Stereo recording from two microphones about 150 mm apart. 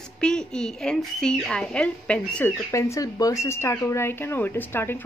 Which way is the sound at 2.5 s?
20° left (ahead or behind).